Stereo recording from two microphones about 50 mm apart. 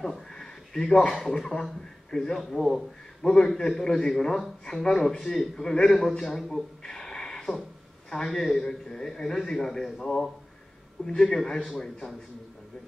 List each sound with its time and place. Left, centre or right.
0.0 s speech: centre
2.3 s a man's voice: centre